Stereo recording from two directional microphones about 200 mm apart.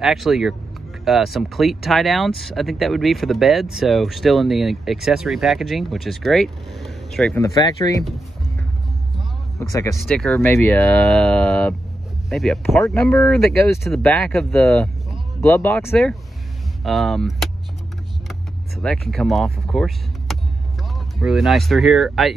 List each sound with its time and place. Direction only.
0.0 s speech: centre (ahead or behind); by 8.0 s 15° left (ahead or behind)
9.6 s speech: 15° left (ahead or behind)
9.9 s speech: centre (ahead or behind)
18.8 s speech: 5° left (ahead or behind)